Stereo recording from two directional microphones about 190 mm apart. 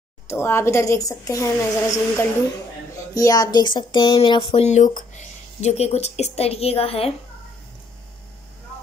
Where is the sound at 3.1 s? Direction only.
20° left (ahead or behind).